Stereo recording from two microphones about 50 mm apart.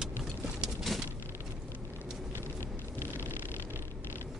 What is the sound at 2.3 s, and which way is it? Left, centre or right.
Vehicle, left.